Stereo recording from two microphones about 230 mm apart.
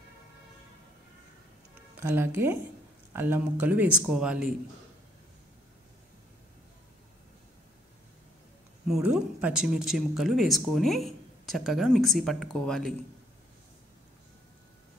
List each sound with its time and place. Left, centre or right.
2.0 s speech: centre
8.8 s speech: centre